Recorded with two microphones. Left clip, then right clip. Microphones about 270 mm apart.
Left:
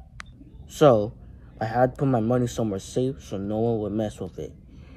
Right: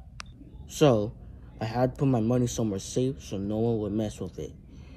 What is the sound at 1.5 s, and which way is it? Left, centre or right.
Speech, centre.